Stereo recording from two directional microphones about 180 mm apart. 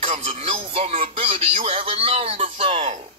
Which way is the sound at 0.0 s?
30° right (ahead or behind).